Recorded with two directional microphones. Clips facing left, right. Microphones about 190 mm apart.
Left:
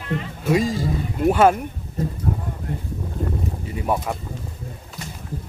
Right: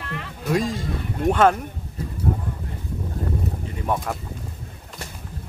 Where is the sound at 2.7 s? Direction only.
55° left (ahead or behind).